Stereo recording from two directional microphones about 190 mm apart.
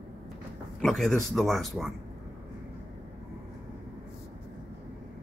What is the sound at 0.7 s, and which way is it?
Speech, centre (ahead or behind).